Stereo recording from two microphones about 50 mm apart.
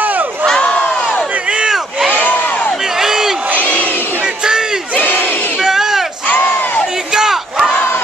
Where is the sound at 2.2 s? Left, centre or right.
Left.